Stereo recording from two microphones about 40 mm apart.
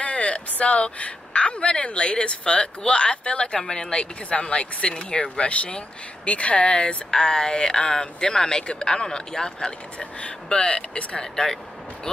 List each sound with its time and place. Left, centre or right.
0.0 s speech: left; by 11.5 s centre